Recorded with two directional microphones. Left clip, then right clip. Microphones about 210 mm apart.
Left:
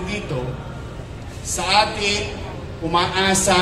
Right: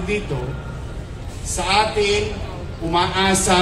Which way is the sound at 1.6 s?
35° left (ahead or behind).